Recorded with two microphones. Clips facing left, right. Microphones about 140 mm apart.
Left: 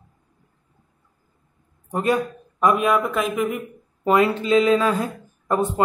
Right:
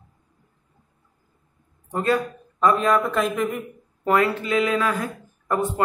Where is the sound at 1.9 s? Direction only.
20° left (ahead or behind); by 3.6 s 5° left (ahead or behind).